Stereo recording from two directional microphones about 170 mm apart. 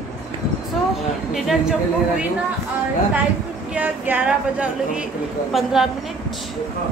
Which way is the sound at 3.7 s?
10° right (ahead or behind).